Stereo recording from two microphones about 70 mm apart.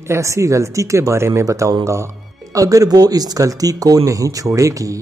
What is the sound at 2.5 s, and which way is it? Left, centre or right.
Speech, right.